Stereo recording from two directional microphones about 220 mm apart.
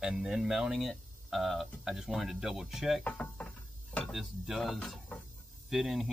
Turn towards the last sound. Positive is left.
turn(degrees=0)  # may be behind; listen again after turning